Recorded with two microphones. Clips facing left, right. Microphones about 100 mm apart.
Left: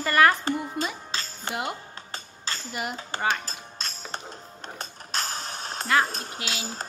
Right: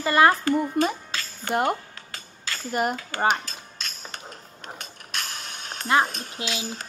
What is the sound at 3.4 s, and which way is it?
Music, 35° left (ahead or behind).